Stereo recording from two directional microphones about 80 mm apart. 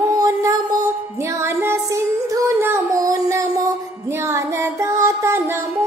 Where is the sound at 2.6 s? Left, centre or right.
Right.